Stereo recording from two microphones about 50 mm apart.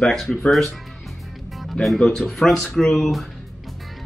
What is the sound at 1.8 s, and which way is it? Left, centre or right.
Speech, centre.